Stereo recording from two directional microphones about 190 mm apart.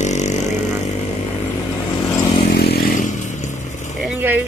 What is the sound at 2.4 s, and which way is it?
Vehicle, 55° left (ahead or behind).